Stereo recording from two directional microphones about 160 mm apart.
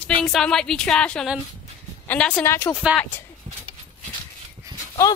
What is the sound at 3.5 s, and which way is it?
Horse, 40° right (ahead or behind).